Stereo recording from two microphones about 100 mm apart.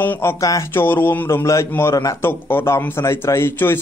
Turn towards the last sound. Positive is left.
turn(degrees=25)  # may be behind; listen again after turning